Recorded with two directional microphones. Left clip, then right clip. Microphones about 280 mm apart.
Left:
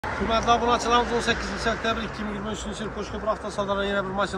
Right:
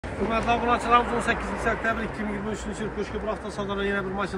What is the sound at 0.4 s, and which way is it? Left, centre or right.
Speech, left.